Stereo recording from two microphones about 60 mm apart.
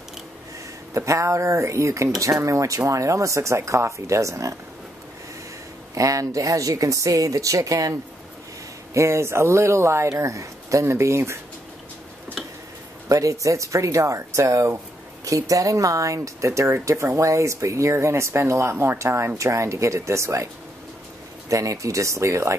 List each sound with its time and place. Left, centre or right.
0.9 s speech: right
5.9 s speech: right
8.9 s speech: right
13.1 s speech: right
15.2 s speech: right
21.5 s speech: right